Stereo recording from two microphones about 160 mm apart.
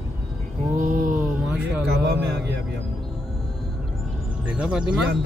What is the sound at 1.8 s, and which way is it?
Speech, 90° right.